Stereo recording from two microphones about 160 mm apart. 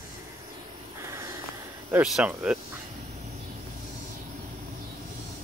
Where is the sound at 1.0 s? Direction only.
20° right (ahead or behind).